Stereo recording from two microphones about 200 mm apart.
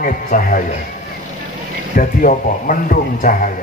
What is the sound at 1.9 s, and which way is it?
A man's voice, 45° left (ahead or behind).